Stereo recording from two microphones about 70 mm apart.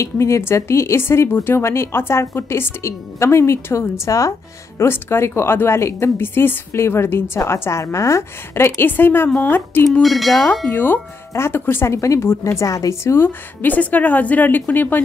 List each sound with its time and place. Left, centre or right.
0.0 s a woman's voice: left
4.7 s a woman's voice: left
10.0 s speech: centre
10.7 s a woman's voice: left
12.6 s a woman's voice: left